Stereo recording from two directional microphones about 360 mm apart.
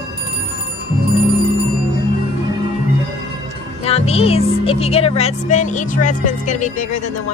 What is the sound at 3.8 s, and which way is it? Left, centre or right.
Speech, centre.